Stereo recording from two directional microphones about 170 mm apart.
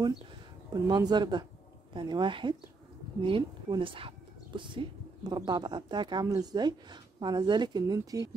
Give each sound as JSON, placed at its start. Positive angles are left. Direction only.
{"t": 0.8, "sound": "speech", "side_deg": -25}